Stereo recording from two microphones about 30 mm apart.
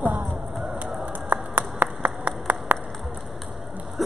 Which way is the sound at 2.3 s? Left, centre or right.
Right.